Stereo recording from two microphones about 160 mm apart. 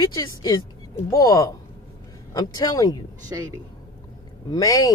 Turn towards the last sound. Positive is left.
turn(degrees=20)  # may be behind; listen again after turning